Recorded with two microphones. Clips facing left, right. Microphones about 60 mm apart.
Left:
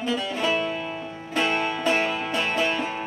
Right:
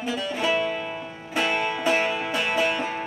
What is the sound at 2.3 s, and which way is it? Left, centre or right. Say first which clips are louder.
Music: right 1 dB; right.